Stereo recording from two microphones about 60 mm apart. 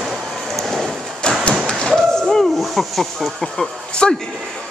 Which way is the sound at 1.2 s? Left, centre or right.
Centre.